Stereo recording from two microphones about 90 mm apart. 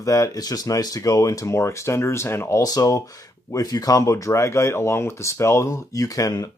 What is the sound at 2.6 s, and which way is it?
Speech, 40° left (ahead or behind).